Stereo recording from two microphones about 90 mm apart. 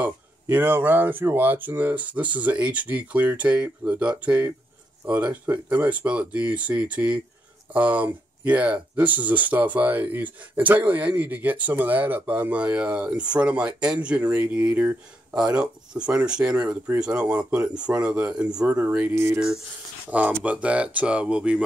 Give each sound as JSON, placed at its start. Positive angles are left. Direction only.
{"t": 0.0, "sound": "speech", "side_deg": -20}
{"t": 19.1, "sound": "speech", "side_deg": -30}
{"t": 20.1, "sound": "speech", "side_deg": -15}